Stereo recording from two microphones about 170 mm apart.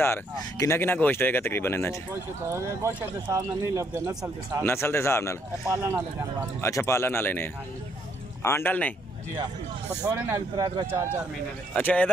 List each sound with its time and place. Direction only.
0.0 s speech: 15° left (ahead or behind)
2.5 s speech: 15° right (ahead or behind)
4.6 s speech: 15° left (ahead or behind)
5.7 s speech: 15° right (ahead or behind)
6.6 s speech: 15° left (ahead or behind)
10.6 s speech: 15° right (ahead or behind)
11.7 s speech: 10° left (ahead or behind)